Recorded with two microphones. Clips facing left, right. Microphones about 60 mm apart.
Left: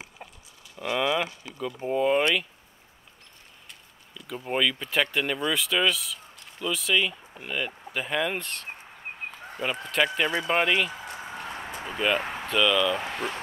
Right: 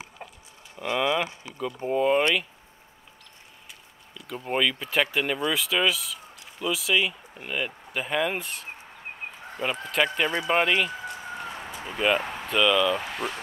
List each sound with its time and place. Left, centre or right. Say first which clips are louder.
0.2 s livestock: right 4 dB; centre
0.7 s speech: right 1 dB; centre
4.1 s speech: right 1 dB; centre
9.2 s a sound: left 1 dB; centre
9.6 s speech: even; centre
11.4 s a sound: even; centre
11.9 s speech: right 2 dB; centre